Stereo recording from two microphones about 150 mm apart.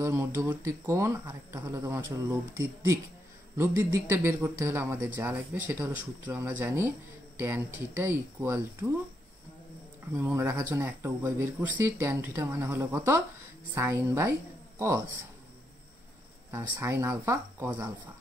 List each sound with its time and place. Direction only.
0.0 s speech: 15° right (ahead or behind)
10.1 s a woman's voice: 15° right (ahead or behind)
16.5 s speech: 20° right (ahead or behind)